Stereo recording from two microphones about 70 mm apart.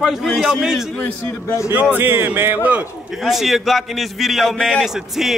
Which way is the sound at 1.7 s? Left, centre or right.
Right.